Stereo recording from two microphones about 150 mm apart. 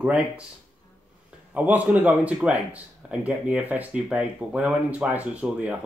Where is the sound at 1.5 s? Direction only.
10° right (ahead or behind).